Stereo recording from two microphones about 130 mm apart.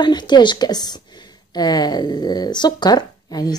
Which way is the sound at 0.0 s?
35° left (ahead or behind).